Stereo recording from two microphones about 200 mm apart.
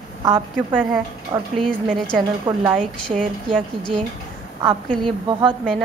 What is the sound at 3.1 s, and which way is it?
A woman's voice, 5° left (ahead or behind).